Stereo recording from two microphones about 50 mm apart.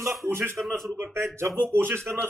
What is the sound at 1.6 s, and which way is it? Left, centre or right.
Speech, right.